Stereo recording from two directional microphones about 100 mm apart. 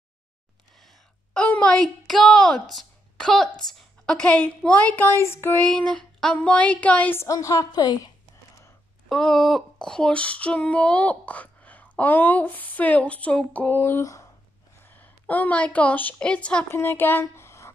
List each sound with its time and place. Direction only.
1.3 s a woman's voice: 10° left (ahead or behind)
5.7 s female singing: 10° left (ahead or behind)
7.2 s a woman's voice: 35° left (ahead or behind)
9.1 s female singing: 5° left (ahead or behind); by 14.3 s 30° left (ahead or behind)
14.9 s a woman's voice: 15° left (ahead or behind)
16.7 s speech: 25° left (ahead or behind)